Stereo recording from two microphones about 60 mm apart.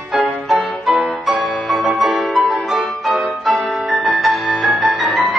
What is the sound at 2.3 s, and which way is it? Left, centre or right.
Music, centre.